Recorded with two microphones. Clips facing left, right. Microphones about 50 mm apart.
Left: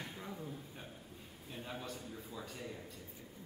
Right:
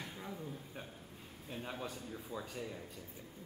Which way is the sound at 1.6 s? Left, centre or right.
Centre.